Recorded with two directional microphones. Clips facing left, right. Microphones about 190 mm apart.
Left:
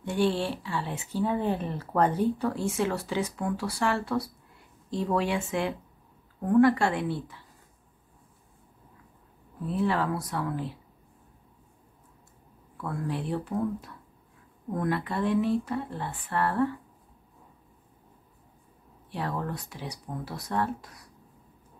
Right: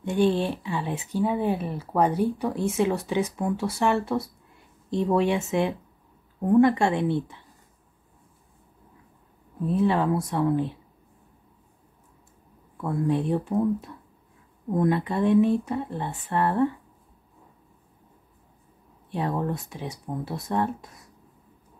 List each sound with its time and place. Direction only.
0.0 s speech: 20° right (ahead or behind)
9.7 s speech: 20° right (ahead or behind)
12.8 s speech: 20° right (ahead or behind)
19.0 s speech: 20° right (ahead or behind)